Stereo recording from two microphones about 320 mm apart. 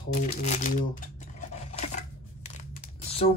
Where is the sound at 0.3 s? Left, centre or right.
Left.